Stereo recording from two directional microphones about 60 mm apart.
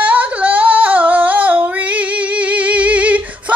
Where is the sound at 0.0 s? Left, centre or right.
Right.